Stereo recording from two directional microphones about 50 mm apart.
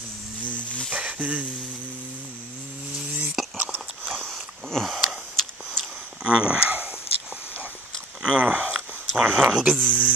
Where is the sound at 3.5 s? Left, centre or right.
Right.